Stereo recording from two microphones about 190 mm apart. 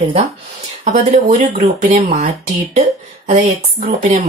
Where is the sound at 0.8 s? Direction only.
40° right (ahead or behind).